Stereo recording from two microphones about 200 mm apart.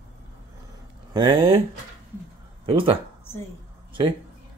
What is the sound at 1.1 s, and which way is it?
Speech, 25° right (ahead or behind).